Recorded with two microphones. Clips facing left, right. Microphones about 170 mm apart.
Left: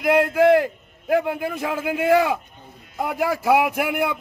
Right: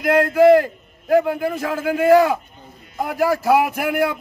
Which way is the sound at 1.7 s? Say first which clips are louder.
Right 5 dB; 40° right (ahead or behind).